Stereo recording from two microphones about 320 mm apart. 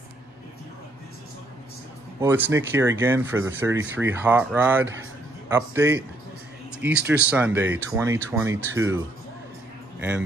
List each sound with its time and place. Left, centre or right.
2.1 s speech: centre
9.9 s speech: centre